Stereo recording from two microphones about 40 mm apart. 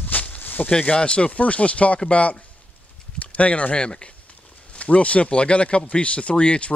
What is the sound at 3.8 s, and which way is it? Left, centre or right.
Speech, left.